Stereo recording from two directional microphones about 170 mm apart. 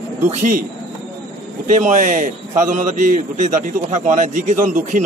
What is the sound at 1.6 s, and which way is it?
A man's voice, 50° right (ahead or behind).